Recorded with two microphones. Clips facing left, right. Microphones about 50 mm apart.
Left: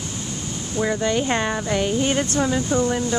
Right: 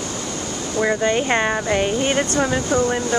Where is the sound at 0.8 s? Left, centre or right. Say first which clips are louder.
Right 2 dB; right.